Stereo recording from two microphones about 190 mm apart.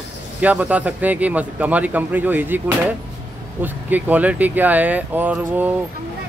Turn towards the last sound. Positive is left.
turn(degrees=-10)  # may be behind; listen again after turning